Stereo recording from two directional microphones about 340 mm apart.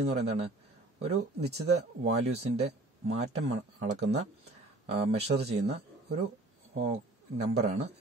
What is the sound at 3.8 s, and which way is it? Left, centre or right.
Speech, centre.